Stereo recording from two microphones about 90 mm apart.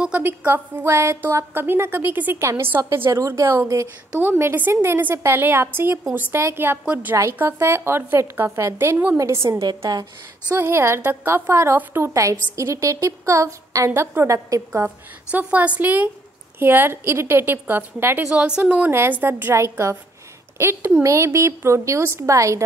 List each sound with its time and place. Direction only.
0.4 s a woman's voice: 25° right (ahead or behind)
4.1 s a woman's voice: 25° right (ahead or behind); by 10.0 s 50° right (ahead or behind)
10.5 s a woman's voice: 30° right (ahead or behind)
15.3 s a woman's voice: 15° right (ahead or behind)
18.3 s a woman's voice: 15° right (ahead or behind); by 22.6 s 35° right (ahead or behind)